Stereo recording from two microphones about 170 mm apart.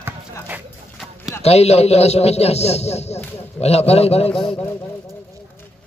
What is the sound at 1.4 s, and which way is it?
A man's voice, 40° left (ahead or behind).